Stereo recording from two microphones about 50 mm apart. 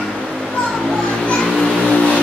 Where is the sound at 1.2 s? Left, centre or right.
Centre.